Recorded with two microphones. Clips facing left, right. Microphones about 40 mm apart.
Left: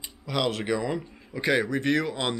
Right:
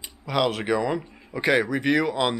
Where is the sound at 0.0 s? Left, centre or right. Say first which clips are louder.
Right 4 dB; centre.